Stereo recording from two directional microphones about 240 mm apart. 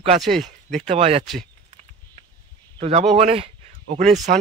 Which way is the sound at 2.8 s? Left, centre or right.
Right.